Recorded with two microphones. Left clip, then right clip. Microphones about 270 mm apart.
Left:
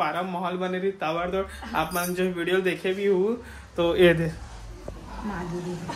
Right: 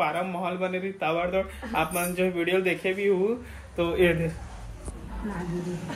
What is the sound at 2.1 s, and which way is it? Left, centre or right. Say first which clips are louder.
Speech: right 4 dB; left.